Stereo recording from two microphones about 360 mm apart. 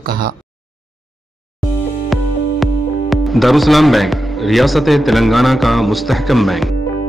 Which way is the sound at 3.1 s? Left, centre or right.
Centre.